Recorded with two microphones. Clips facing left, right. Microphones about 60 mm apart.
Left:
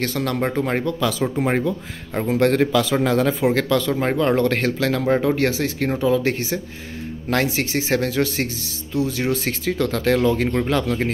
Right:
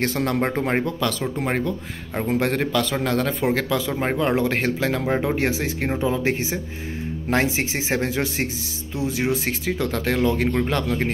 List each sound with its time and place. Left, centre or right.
0.0 s speech: right
1.0 s speech: centre
5.9 s speech: right; by 11.1 s centre